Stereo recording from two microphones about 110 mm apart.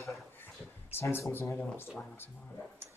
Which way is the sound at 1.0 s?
25° left (ahead or behind).